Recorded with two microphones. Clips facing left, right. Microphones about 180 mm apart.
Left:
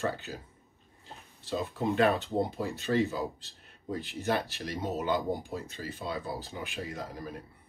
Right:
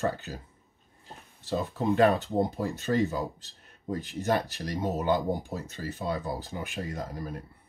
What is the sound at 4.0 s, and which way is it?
Speech, 40° right (ahead or behind).